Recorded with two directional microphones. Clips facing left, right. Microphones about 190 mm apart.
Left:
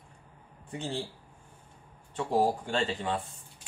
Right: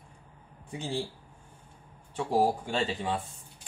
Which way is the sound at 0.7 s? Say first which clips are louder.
Right 1 dB; 5° right (ahead or behind).